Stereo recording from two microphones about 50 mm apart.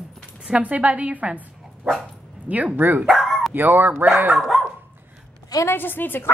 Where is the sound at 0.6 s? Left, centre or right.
Right.